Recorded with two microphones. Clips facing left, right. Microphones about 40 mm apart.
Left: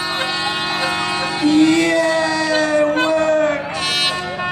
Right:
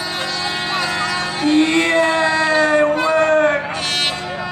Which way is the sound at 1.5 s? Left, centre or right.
Right.